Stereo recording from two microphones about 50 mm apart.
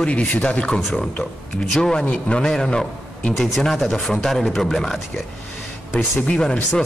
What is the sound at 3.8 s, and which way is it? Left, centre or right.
A man's voice, centre.